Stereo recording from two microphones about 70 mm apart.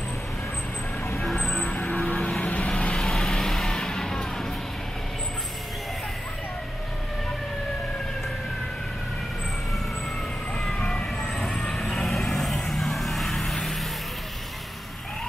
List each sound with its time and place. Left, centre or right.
1.3 s vehicle: centre
10.7 s vehicle: centre